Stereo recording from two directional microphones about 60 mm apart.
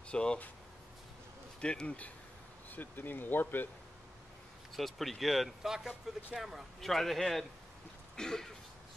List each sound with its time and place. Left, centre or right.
0.1 s speech: centre
1.6 s speech: centre; by 3.6 s left
4.7 s speech: centre
8.2 s throat clearing: centre